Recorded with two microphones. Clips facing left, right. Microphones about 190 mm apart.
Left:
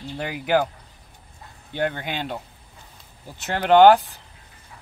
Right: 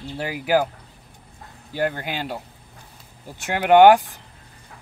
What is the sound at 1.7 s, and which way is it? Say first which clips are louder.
Speech: right 1 dB; 5° right (ahead or behind).